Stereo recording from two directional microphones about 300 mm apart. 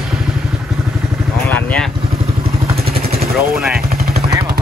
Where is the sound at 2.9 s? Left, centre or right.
Right.